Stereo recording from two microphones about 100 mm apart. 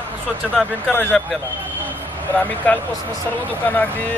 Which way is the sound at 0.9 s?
15° left (ahead or behind).